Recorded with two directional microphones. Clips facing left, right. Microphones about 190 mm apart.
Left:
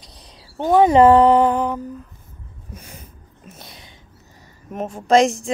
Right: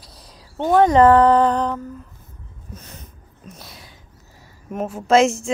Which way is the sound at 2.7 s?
10° left (ahead or behind).